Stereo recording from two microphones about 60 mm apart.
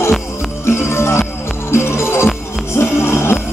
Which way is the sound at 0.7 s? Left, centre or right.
Left.